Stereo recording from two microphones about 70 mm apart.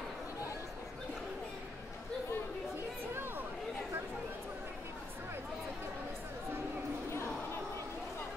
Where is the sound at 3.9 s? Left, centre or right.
Right.